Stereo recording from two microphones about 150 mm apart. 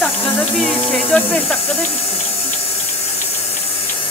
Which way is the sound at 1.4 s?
Centre (ahead or behind).